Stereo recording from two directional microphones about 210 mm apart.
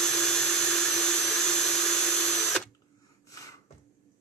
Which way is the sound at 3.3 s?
15° left (ahead or behind).